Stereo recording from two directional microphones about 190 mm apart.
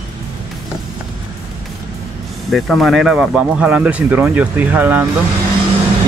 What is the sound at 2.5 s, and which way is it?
Speech, centre (ahead or behind).